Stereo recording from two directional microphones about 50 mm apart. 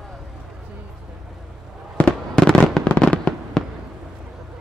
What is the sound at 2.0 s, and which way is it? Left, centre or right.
Fireworks, centre.